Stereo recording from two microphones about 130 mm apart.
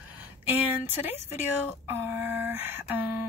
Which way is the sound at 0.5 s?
15° right (ahead or behind).